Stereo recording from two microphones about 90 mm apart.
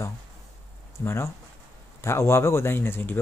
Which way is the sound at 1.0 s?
30° left (ahead or behind).